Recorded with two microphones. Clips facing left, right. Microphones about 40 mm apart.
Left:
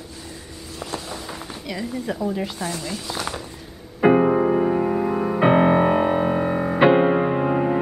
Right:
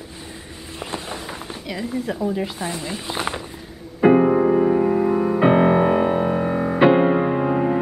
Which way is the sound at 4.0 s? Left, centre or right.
Centre.